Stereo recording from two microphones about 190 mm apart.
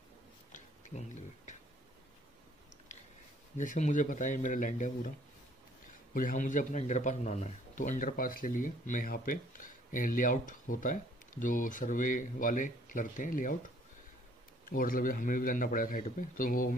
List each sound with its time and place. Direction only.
0.5 s tick-tock: 40° left (ahead or behind)
3.5 s a man's voice: 40° left (ahead or behind)
6.1 s a man's voice: 45° left (ahead or behind)
14.7 s a man's voice: 45° left (ahead or behind)